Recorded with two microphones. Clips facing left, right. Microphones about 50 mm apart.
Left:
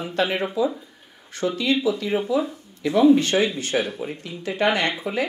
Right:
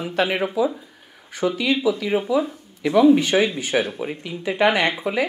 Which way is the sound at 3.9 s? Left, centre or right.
Right.